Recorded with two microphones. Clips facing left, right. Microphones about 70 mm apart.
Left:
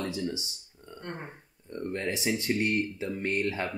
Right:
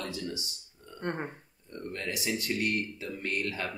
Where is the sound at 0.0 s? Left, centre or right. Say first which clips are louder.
Left 4 dB; left.